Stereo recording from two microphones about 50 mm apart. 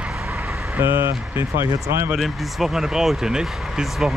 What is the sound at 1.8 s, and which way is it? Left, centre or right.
Speech, right.